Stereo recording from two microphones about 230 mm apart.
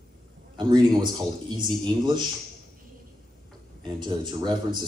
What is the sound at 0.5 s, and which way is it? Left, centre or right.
A man's voice, centre.